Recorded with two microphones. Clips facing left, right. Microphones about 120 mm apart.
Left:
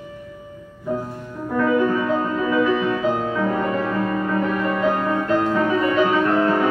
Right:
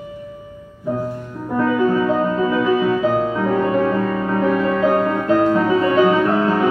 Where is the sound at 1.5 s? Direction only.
15° right (ahead or behind).